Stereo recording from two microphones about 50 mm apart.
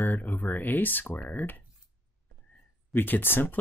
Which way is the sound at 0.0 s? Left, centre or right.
Left.